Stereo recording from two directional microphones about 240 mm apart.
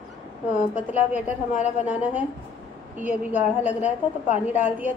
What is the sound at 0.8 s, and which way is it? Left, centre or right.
A woman's voice, centre.